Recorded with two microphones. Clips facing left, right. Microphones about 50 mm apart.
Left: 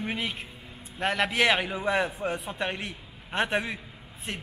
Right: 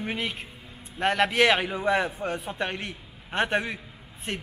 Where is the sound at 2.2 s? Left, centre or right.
Left.